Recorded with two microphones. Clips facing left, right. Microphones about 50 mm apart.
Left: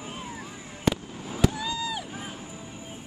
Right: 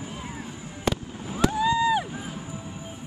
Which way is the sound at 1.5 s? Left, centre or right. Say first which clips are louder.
Right 10 dB; right.